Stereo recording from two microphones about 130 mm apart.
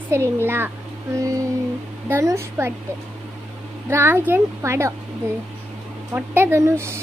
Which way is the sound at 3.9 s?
15° right (ahead or behind).